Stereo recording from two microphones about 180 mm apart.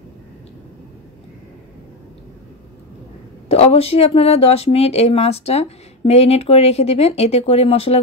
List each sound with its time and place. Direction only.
3.4 s a woman's voice: 35° left (ahead or behind)